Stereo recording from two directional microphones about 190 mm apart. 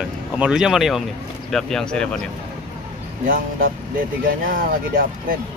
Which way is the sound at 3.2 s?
45° right (ahead or behind).